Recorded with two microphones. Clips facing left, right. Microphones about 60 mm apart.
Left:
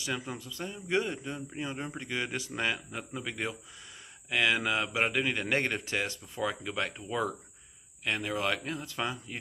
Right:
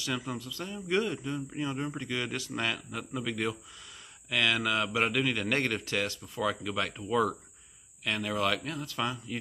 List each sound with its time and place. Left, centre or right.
0.0 s speech: centre